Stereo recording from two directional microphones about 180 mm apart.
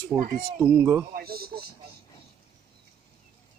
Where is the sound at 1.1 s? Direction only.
55° right (ahead or behind).